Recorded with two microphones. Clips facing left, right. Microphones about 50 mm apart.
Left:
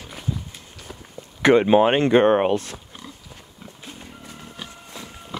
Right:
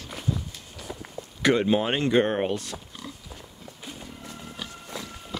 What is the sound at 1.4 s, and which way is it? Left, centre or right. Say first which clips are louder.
Speech: left 7 dB; left.